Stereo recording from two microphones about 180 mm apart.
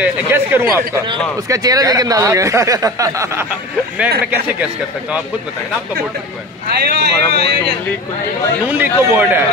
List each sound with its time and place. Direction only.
0.0 s speech: 10° right (ahead or behind)
6.7 s speech: 60° right (ahead or behind)
8.6 s speech: 10° right (ahead or behind)